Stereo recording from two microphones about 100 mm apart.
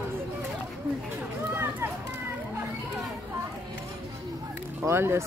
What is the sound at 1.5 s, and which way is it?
Run, 25° right (ahead or behind).